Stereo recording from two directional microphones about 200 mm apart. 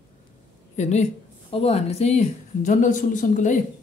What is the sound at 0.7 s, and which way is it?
A woman's voice, 35° left (ahead or behind).